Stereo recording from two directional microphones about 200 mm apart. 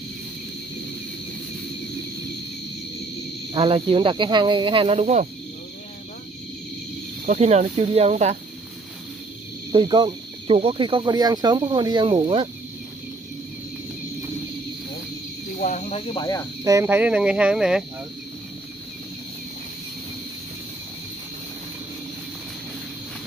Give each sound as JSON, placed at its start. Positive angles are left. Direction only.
{"t": 3.5, "sound": "speech", "side_deg": -25}
{"t": 7.3, "sound": "speech", "side_deg": -35}
{"t": 9.7, "sound": "speech", "side_deg": -20}
{"t": 15.6, "sound": "speech", "side_deg": 35}
{"t": 16.6, "sound": "speech", "side_deg": -15}